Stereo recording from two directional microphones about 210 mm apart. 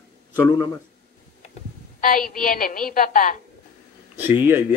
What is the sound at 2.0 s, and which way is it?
A woman's voice, 40° left (ahead or behind).